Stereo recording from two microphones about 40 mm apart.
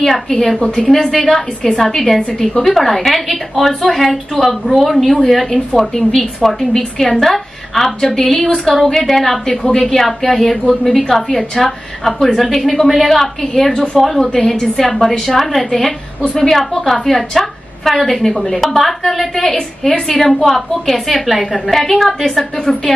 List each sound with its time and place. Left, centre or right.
0.0 s a woman's voice: centre
0.6 s a woman's voice: left
1.1 s a woman's voice: centre